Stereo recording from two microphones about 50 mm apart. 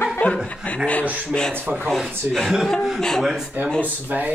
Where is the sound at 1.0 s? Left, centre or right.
Right.